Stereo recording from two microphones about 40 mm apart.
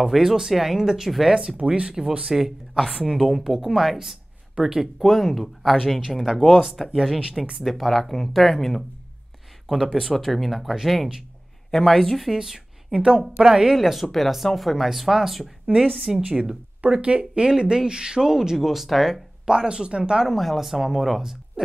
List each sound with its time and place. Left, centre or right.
0.0 s speech: centre
1.5 s speech: right
3.2 s speech: centre
10.0 s speech: centre
11.7 s speech: centre
12.4 s a woman's voice: centre
13.7 s speech: centre
16.3 s speech: centre
16.9 s speech: right; by 19.2 s centre
19.4 s speech: centre
20.2 s speech: centre